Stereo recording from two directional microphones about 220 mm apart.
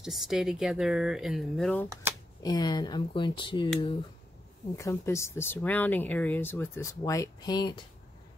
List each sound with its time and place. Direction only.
0.0 s speech: centre (ahead or behind)
2.4 s speech: 20° left (ahead or behind)
4.7 s speech: 15° left (ahead or behind)